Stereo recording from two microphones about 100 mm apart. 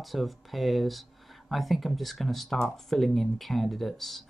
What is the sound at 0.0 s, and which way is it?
Speech, centre (ahead or behind).